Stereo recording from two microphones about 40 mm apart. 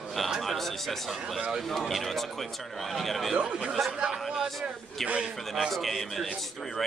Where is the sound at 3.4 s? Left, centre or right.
Right; by 4.7 s centre.